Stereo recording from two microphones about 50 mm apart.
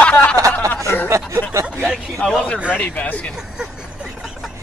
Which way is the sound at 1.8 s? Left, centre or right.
Centre.